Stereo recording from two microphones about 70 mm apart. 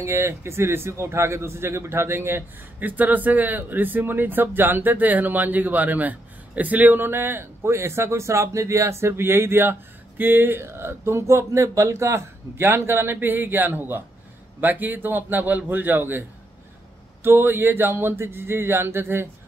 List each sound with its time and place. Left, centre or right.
0.0 s a man's voice: right